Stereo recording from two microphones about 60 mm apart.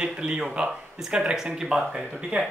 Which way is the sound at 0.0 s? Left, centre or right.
Centre.